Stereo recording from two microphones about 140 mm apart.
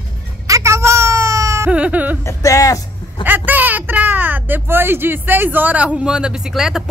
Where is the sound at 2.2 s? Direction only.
20° left (ahead or behind).